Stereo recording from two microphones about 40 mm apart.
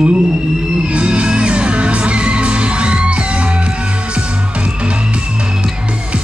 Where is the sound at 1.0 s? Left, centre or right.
Right.